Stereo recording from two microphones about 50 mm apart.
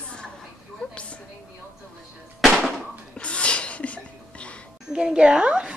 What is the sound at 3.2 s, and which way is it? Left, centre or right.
Sneeze, left.